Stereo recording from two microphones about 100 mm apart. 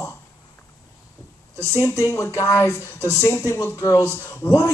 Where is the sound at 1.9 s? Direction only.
30° left (ahead or behind).